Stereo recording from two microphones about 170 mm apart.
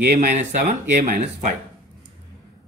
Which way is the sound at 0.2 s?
45° right (ahead or behind).